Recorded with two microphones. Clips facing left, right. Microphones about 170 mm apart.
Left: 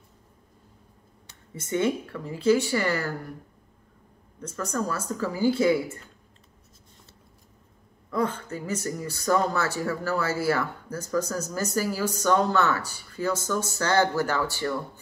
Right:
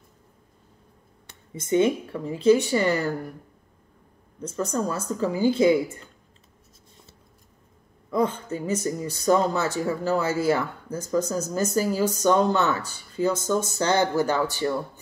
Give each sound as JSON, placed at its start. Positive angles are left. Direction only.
{"t": 1.5, "sound": "speech", "side_deg": -15}
{"t": 4.4, "sound": "speech", "side_deg": -20}
{"t": 8.1, "sound": "speech", "side_deg": -20}